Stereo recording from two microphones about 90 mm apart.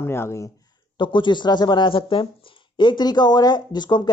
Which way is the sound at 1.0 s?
60° left (ahead or behind).